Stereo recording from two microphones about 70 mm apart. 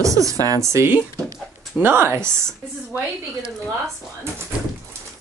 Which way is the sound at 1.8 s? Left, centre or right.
Right.